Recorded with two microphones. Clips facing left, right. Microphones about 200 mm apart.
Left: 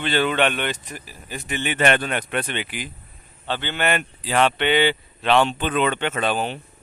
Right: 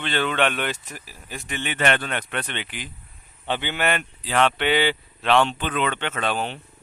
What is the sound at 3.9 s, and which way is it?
Speech, 5° left (ahead or behind).